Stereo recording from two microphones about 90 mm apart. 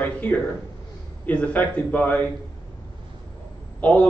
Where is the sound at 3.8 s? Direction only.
15° left (ahead or behind).